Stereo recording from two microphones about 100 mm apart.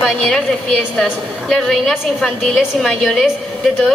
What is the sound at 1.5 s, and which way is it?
A woman's voice, 5° left (ahead or behind).